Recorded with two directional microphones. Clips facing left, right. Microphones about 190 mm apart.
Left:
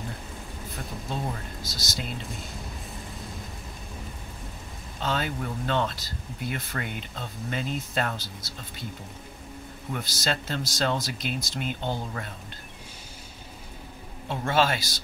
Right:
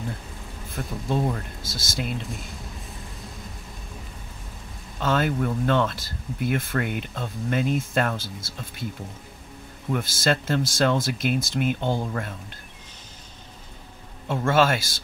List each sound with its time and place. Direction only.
0.7 s speech: 55° right (ahead or behind)
2.2 s speech: centre (ahead or behind)
5.0 s speech: 50° right (ahead or behind)
9.8 s speech: 50° right (ahead or behind)
14.2 s speech: 50° right (ahead or behind)